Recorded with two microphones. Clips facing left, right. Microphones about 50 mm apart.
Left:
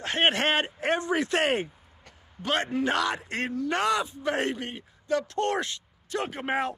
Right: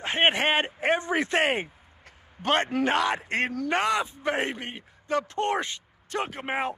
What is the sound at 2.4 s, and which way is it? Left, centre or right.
A man's voice, right.